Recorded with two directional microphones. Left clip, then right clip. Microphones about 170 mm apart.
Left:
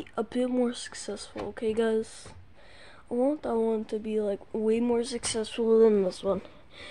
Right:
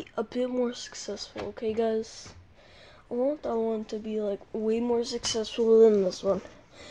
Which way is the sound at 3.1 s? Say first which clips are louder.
Left 1 dB; 10° left (ahead or behind).